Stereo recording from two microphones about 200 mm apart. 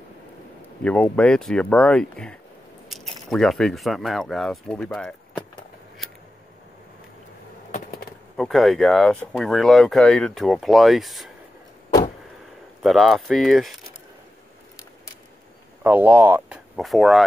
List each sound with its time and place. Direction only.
0.8 s speech: 5° left (ahead or behind)
7.7 s insect: 50° left (ahead or behind)
8.4 s speech: centre (ahead or behind)
12.8 s speech: centre (ahead or behind)
15.8 s speech: 10° right (ahead or behind)